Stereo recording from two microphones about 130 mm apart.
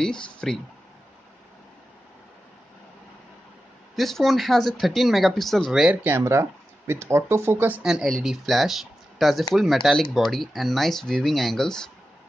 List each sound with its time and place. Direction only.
0.0 s speech: 5° left (ahead or behind)
3.9 s speech: centre (ahead or behind)
6.0 s speech: 20° right (ahead or behind)
7.8 s speech: 5° right (ahead or behind)